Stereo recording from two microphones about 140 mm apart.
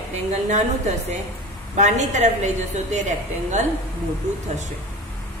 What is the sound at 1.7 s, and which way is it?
A woman's voice, 55° right (ahead or behind).